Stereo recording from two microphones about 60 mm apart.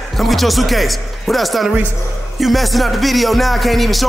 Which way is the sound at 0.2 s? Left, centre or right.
Centre.